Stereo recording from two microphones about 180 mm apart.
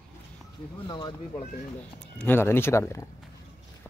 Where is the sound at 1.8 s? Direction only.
10° left (ahead or behind).